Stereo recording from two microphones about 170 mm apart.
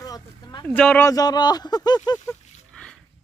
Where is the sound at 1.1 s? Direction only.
25° left (ahead or behind).